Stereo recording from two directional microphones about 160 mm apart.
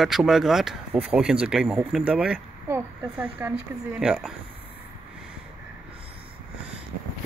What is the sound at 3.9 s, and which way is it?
Speech, 5° right (ahead or behind).